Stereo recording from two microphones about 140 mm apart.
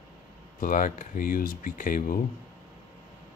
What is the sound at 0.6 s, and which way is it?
Speech, 70° left (ahead or behind).